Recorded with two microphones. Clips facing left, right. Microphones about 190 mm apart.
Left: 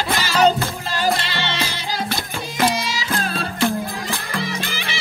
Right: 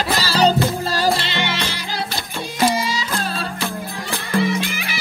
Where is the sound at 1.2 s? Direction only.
20° right (ahead or behind).